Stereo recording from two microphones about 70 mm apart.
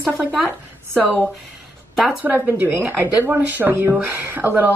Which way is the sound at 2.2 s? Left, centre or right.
Right.